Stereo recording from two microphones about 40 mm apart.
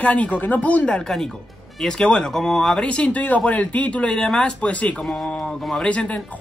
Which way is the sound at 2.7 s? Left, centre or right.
Left.